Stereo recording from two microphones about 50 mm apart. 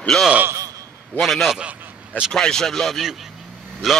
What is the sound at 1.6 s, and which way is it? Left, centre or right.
Vehicle, right.